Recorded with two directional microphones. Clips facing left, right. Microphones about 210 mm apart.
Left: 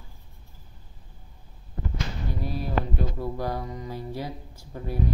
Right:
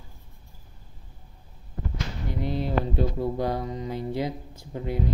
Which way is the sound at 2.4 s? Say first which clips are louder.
Right 3 dB; 20° right (ahead or behind).